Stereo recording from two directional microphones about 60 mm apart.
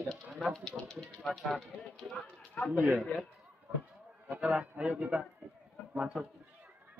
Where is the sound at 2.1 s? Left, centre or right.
Centre.